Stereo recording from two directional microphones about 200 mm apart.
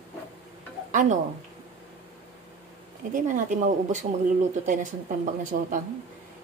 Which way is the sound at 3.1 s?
40° right (ahead or behind).